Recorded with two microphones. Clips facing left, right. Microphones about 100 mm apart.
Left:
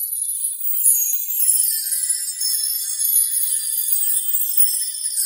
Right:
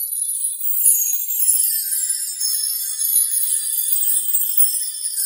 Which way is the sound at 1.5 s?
40° right (ahead or behind).